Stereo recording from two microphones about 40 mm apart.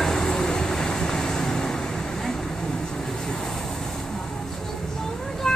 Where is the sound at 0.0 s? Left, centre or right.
Centre.